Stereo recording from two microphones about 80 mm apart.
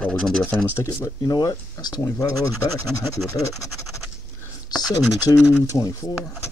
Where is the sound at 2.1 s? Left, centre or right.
Left.